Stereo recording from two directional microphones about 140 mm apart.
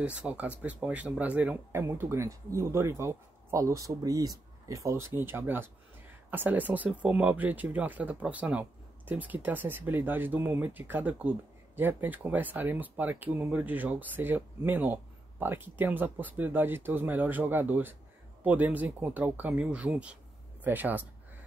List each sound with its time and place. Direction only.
0.0 s speech: 10° right (ahead or behind)